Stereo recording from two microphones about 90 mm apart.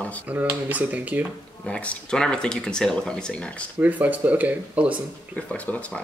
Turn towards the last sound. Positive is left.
turn(degrees=15)  # may be behind; listen again after turning